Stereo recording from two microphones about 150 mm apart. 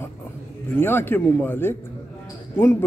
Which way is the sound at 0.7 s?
15° left (ahead or behind).